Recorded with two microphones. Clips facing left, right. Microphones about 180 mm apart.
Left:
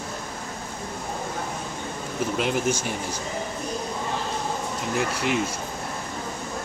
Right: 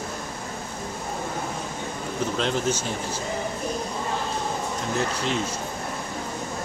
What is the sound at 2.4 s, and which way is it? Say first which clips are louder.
Speech: left 1 dB; 10° left (ahead or behind).